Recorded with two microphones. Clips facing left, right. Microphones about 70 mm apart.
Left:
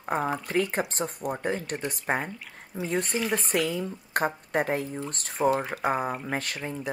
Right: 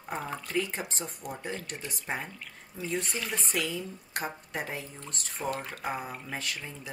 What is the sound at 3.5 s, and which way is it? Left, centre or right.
Speech, left.